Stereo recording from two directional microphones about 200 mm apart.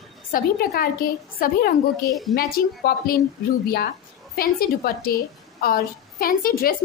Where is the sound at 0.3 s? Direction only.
50° left (ahead or behind).